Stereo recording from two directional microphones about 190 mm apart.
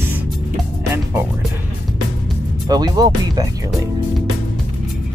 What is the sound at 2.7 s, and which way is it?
Speech, 20° right (ahead or behind).